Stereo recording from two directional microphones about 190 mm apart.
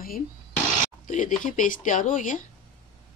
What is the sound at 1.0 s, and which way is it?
Speech, 45° left (ahead or behind).